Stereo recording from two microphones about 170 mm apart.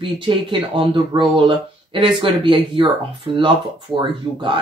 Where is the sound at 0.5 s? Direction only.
30° right (ahead or behind).